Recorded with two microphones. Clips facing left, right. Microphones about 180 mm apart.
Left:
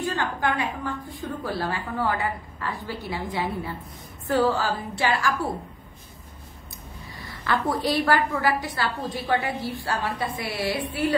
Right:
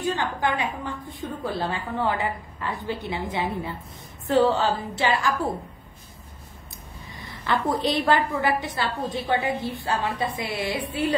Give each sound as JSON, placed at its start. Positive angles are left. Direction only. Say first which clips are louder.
{"t": 0.0, "sound": "a woman's voice", "louder": "right 1 dB", "side_deg": -20}
{"t": 7.2, "sound": "a woman's voice", "louder": "even", "side_deg": -20}